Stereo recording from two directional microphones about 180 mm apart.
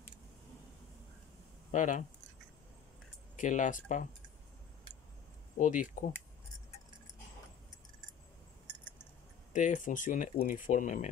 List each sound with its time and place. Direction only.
1.7 s speech: 45° left (ahead or behind)
3.3 s speech: 45° left (ahead or behind)
5.6 s speech: 45° left (ahead or behind)
9.5 s speech: 45° left (ahead or behind)